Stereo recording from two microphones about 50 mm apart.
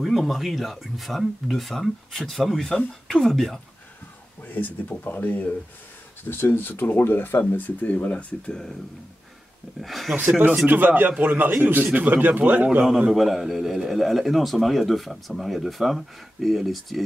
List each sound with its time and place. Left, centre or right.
0.0 s speech: centre
4.5 s speech: left
6.2 s speech: left
9.8 s speech: centre
10.7 s speech: right
13.1 s speech: centre